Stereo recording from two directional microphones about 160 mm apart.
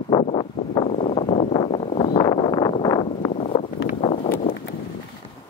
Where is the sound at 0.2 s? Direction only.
35° left (ahead or behind).